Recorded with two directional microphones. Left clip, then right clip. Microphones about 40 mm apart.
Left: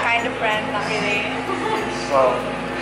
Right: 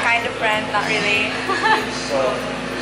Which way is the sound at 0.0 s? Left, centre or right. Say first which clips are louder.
Right 1 dB; centre.